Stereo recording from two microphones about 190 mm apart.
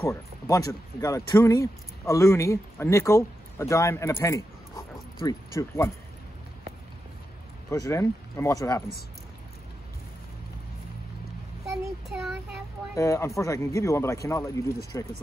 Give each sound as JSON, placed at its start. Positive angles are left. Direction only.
{"t": 0.0, "sound": "speech", "side_deg": 15}
{"t": 7.7, "sound": "speech", "side_deg": 15}
{"t": 12.1, "sound": "child singing", "side_deg": 0}
{"t": 12.9, "sound": "speech", "side_deg": 15}